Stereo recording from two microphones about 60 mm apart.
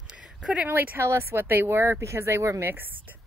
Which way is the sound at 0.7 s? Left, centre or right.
Right.